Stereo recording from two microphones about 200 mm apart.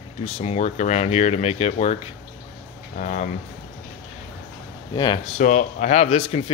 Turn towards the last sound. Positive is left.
turn(degrees=30)  # may be behind; listen again after turning